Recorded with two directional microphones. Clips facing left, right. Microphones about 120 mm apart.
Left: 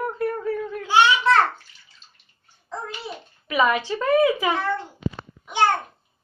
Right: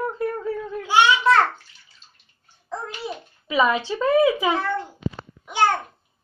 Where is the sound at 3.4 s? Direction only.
15° right (ahead or behind).